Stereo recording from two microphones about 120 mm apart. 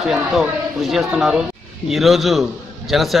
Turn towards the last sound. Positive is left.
turn(degrees=0)  # may be behind; listen again after turning